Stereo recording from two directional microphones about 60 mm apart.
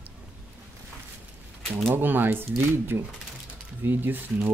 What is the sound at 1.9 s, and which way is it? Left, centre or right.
Speech, right.